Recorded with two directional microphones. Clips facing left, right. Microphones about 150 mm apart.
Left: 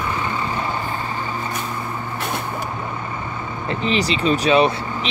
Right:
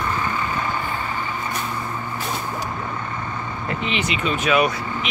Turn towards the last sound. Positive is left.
turn(degrees=30)  # may be behind; listen again after turning